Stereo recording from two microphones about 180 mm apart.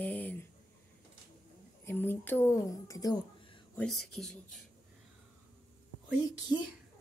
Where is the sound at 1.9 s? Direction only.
10° left (ahead or behind); by 3.6 s 30° left (ahead or behind).